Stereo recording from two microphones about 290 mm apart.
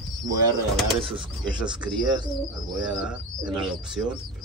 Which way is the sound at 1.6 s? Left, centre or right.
Centre.